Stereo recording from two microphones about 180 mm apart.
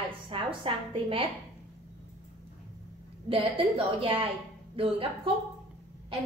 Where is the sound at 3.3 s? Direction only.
30° right (ahead or behind).